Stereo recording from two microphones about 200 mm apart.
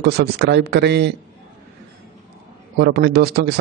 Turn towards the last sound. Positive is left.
turn(degrees=-50)  # may be behind; listen again after turning